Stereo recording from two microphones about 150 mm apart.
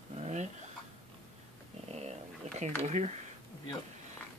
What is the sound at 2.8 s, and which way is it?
Speech, 45° right (ahead or behind).